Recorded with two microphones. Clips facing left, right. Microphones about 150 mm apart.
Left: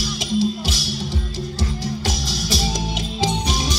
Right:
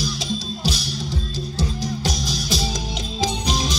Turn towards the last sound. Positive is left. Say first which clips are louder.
# even
turn(degrees=-15)  # may be behind; listen again after turning